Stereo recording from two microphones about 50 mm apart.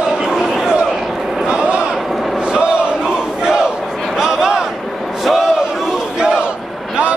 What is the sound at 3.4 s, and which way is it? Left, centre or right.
Battle cry, centre.